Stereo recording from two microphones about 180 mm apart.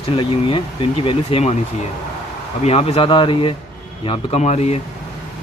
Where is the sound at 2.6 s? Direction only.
35° left (ahead or behind).